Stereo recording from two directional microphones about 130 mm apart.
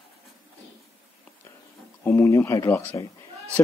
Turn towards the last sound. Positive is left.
turn(degrees=20)  # may be behind; listen again after turning